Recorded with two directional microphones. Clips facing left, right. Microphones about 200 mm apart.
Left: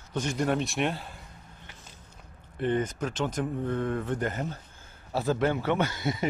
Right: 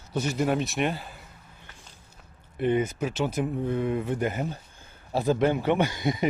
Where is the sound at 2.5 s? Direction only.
10° right (ahead or behind).